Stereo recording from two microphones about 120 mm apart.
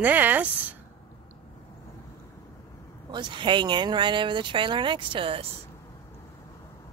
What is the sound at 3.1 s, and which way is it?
Speech, 40° right (ahead or behind).